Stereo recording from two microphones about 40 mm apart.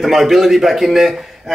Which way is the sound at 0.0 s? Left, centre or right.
Centre.